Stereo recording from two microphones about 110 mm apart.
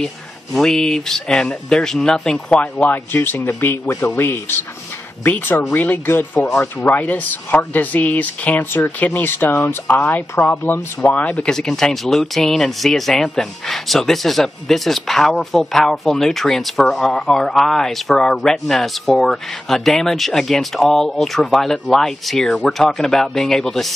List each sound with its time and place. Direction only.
0.0 s speech: 5° left (ahead or behind)
2.8 s speech: 15° left (ahead or behind)